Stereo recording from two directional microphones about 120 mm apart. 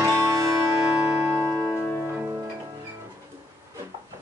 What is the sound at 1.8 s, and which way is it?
Music, 15° left (ahead or behind).